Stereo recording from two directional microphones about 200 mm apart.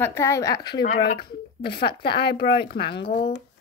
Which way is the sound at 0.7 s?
55° left (ahead or behind).